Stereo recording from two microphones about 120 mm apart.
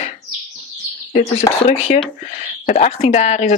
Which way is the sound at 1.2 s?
60° left (ahead or behind).